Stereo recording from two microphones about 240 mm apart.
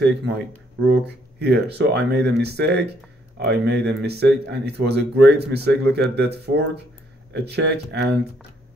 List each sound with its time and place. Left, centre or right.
0.0 s speech: right
1.4 s speech: right